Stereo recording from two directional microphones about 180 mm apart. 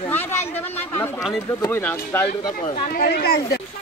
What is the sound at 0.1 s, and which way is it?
Speech, 10° left (ahead or behind).